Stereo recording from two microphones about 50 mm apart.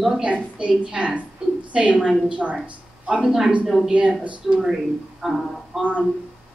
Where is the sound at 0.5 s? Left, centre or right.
Right.